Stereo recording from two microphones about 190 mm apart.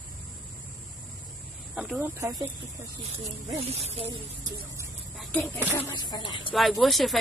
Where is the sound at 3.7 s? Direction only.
35° right (ahead or behind).